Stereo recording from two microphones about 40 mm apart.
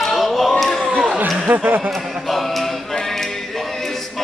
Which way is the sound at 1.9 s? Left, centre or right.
Centre.